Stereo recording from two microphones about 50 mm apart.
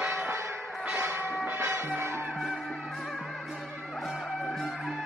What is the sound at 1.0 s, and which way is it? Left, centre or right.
Church bell, right.